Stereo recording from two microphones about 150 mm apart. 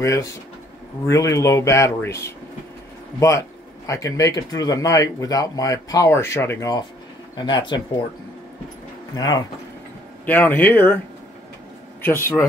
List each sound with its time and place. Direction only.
0.0 s speech: 20° left (ahead or behind)
7.3 s speech: 30° left (ahead or behind)
9.1 s speech: 25° left (ahead or behind)
10.2 s speech: 10° left (ahead or behind)
12.0 s speech: 15° left (ahead or behind)